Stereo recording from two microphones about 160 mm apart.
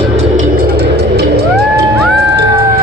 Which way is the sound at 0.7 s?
90° right.